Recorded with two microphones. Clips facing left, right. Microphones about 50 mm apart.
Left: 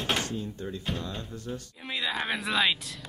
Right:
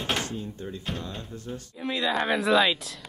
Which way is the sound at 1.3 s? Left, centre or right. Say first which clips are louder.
Even; right.